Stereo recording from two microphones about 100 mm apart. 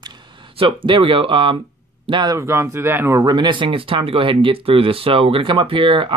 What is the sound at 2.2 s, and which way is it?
Speech, 30° right (ahead or behind).